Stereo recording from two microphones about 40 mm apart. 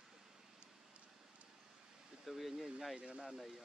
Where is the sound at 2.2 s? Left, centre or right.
Centre.